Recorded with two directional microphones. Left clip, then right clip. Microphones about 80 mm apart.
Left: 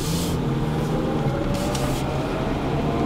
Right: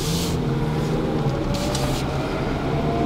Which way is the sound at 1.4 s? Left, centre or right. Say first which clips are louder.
Even; centre.